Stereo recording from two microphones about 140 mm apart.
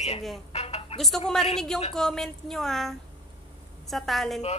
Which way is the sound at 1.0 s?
Centre (ahead or behind).